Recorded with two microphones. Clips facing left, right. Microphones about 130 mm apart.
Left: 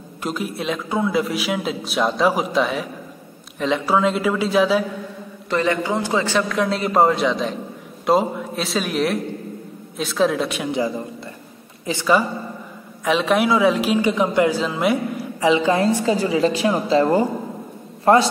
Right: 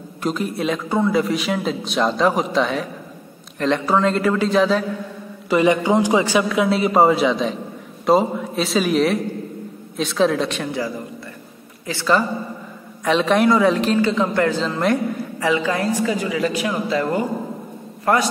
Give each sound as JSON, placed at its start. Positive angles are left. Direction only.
{"t": 0.2, "sound": "a man's voice", "side_deg": 0}
{"t": 5.5, "sound": "a man's voice", "side_deg": -15}
{"t": 11.8, "sound": "a man's voice", "side_deg": 15}
{"t": 13.0, "sound": "a man's voice", "side_deg": 0}
{"t": 15.4, "sound": "a woman's voice", "side_deg": 25}